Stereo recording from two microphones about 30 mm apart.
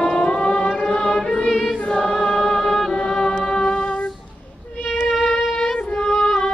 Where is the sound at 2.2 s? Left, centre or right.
Left.